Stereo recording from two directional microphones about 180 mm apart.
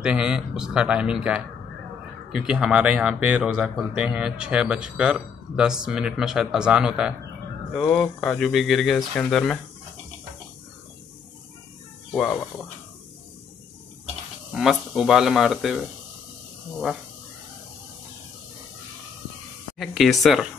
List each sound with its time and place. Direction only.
0.0 s speech: 5° right (ahead or behind)
12.1 s speech: 5° left (ahead or behind)
14.5 s speech: centre (ahead or behind)
19.8 s speech: centre (ahead or behind)